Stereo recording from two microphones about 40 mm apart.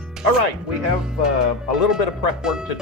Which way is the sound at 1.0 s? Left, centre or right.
Centre.